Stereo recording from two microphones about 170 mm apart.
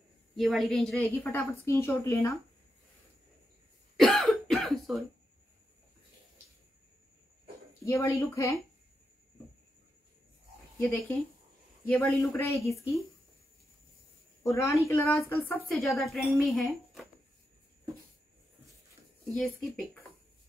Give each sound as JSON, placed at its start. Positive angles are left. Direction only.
{"t": 0.4, "sound": "a woman's voice", "side_deg": 0}
{"t": 3.9, "sound": "cough", "side_deg": 0}
{"t": 7.8, "sound": "a woman's voice", "side_deg": 15}
{"t": 10.8, "sound": "a woman's voice", "side_deg": 10}
{"t": 14.4, "sound": "a woman's voice", "side_deg": 20}
{"t": 15.8, "sound": "speech", "side_deg": 0}
{"t": 19.3, "sound": "speech", "side_deg": 5}